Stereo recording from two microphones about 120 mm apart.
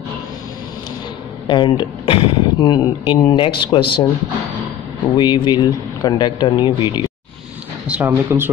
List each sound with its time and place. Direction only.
1.5 s speech: 40° left (ahead or behind)
5.1 s speech: 40° left (ahead or behind)
8.0 s speech: 20° right (ahead or behind)